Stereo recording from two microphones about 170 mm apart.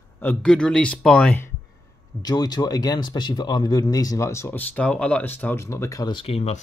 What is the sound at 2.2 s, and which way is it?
Speech, 25° left (ahead or behind).